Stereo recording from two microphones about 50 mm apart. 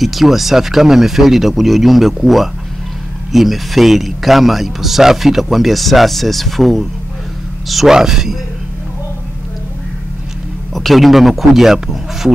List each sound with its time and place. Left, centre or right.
0.0 s a man's voice: centre
10.7 s a man's voice: centre